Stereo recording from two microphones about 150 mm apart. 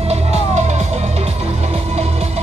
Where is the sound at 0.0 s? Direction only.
45° right (ahead or behind).